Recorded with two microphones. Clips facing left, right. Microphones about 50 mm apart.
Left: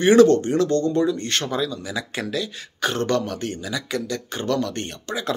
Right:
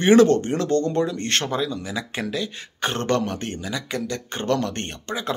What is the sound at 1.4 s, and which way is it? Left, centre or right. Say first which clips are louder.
Speech: even; right.